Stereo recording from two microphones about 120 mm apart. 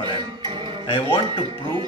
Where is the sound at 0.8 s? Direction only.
50° left (ahead or behind).